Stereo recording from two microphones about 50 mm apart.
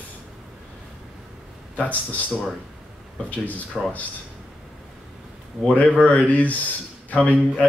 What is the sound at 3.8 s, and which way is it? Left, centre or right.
Speech, centre.